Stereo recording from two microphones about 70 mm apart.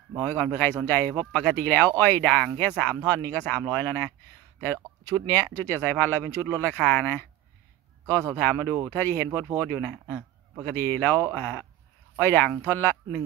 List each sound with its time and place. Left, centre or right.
0.2 s speech: left
2.5 s speech: left
8.4 s speech: left